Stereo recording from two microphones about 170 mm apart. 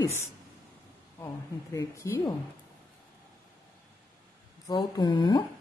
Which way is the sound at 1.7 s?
15° left (ahead or behind).